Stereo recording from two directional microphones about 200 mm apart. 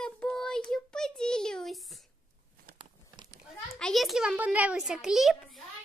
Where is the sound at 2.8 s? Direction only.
20° right (ahead or behind).